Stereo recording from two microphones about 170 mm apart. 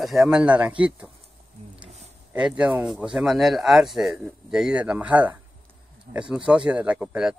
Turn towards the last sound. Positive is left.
turn(degrees=-5)  # may be behind; listen again after turning